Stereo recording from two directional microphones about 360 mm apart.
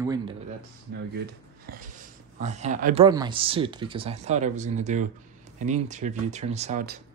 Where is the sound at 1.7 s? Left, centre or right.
Right.